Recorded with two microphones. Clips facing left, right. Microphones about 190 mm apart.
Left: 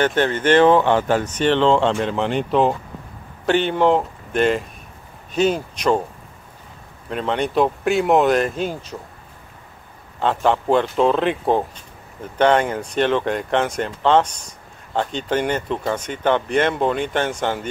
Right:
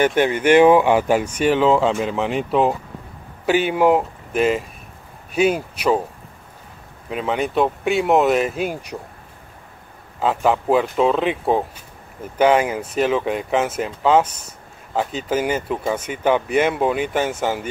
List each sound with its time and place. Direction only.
0.0 s speech: 10° right (ahead or behind)
7.1 s speech: 5° right (ahead or behind)
10.2 s speech: 5° right (ahead or behind)